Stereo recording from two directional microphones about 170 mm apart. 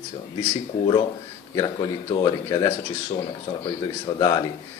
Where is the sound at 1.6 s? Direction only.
20° left (ahead or behind).